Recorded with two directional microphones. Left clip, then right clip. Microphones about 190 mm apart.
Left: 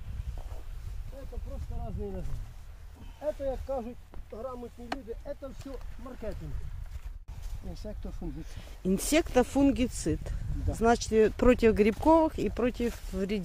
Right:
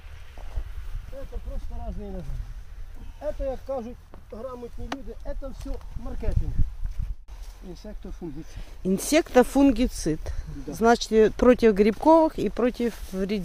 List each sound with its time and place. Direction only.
3.4 s speech: 55° right (ahead or behind)
6.3 s speech: 60° right (ahead or behind)
8.5 s speech: 10° right (ahead or behind)
9.3 s speech: 25° right (ahead or behind)